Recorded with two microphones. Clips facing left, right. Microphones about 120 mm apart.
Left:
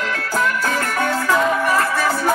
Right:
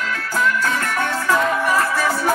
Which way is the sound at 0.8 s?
5° left (ahead or behind).